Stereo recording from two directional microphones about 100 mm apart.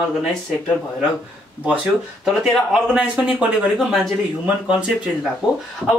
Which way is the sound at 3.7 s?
Centre (ahead or behind).